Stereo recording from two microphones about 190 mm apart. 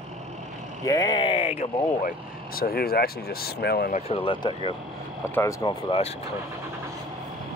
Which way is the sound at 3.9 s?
30° left (ahead or behind).